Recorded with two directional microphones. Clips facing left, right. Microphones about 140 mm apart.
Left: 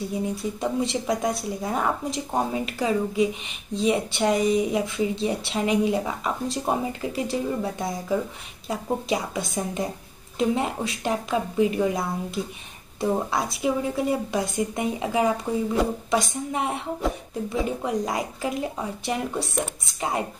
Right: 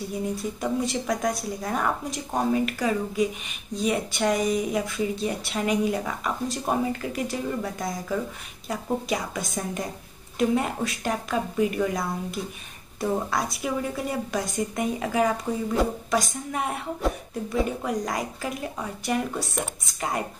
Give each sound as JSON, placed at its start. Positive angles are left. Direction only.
{"t": 0.6, "sound": "speech", "side_deg": 25}